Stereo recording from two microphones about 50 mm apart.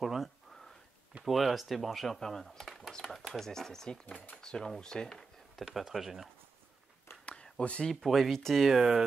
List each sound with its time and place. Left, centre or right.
0.0 s speech: centre
4.0 s speech: left
4.4 s speech: centre
5.8 s speech: centre
7.1 s a sound: left
7.5 s speech: left
7.9 s speech: centre
8.6 s speech: centre